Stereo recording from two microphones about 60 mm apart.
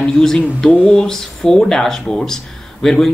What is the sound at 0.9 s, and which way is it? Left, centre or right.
Speech, centre.